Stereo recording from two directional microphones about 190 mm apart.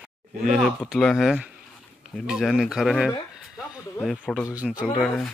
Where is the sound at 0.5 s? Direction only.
Centre (ahead or behind).